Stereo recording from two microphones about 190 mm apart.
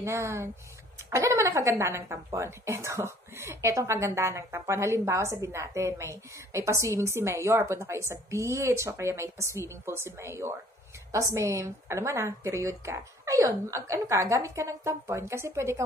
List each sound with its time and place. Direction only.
0.0 s speech: 15° right (ahead or behind)